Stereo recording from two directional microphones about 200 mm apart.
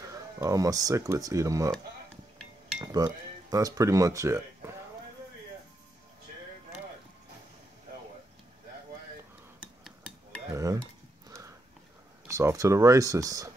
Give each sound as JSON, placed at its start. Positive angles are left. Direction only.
{"t": 0.4, "sound": "speech", "side_deg": -15}
{"t": 2.8, "sound": "speech", "side_deg": -20}
{"t": 9.6, "sound": "cutlery", "side_deg": -5}
{"t": 10.5, "sound": "dishes", "side_deg": -15}
{"t": 11.2, "sound": "horse", "side_deg": -15}
{"t": 12.3, "sound": "speech", "side_deg": -15}